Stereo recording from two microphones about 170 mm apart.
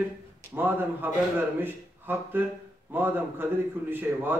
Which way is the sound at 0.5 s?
10° right (ahead or behind).